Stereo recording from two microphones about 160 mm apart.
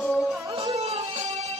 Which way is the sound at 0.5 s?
40° right (ahead or behind).